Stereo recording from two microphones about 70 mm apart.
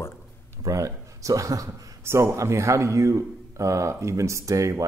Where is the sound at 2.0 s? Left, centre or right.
Right.